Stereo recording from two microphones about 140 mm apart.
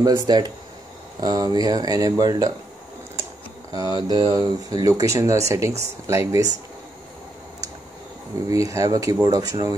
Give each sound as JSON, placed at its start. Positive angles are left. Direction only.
{"t": 0.0, "sound": "speech", "side_deg": -30}
{"t": 3.7, "sound": "speech", "side_deg": -25}
{"t": 8.5, "sound": "speech", "side_deg": -25}